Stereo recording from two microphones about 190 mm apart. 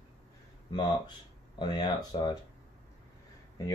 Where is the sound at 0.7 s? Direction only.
25° left (ahead or behind).